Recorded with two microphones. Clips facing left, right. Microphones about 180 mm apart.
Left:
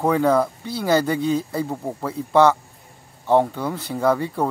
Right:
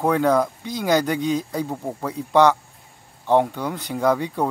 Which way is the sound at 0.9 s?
5° left (ahead or behind).